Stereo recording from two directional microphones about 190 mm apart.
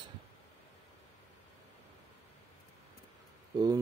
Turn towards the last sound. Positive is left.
turn(degrees=-20)  # may be behind; listen again after turning